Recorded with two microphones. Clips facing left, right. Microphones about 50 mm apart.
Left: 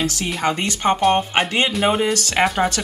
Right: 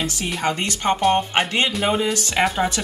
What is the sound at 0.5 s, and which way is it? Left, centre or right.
Speech, left.